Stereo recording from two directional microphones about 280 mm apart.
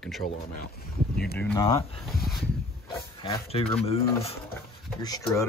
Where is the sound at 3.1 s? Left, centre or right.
Centre.